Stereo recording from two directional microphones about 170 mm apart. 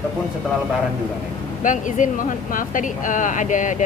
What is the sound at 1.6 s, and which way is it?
Speech, 50° left (ahead or behind).